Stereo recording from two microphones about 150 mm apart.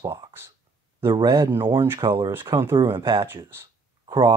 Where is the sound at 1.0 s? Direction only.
30° right (ahead or behind).